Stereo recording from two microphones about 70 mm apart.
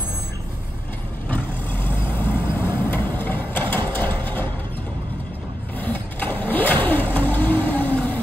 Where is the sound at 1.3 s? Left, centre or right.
Left.